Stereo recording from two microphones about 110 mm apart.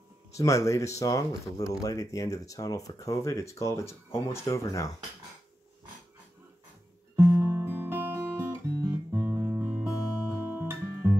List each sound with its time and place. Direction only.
0.4 s speech: 30° left (ahead or behind)
7.2 s guitar: 25° right (ahead or behind)
9.8 s music: 15° right (ahead or behind)